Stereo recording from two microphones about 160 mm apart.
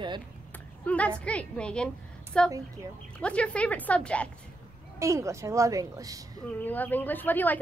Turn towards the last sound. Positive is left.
turn(degrees=10)  # may be behind; listen again after turning